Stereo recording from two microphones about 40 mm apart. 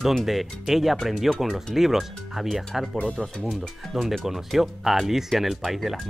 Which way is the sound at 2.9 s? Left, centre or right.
Left.